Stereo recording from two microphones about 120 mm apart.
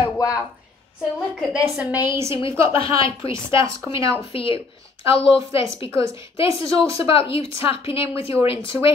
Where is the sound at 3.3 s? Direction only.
25° right (ahead or behind).